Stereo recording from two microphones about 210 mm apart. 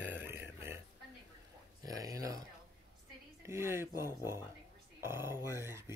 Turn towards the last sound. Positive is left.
turn(degrees=-10)  # may be behind; listen again after turning